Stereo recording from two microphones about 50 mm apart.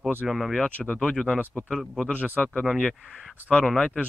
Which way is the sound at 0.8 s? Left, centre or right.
Centre.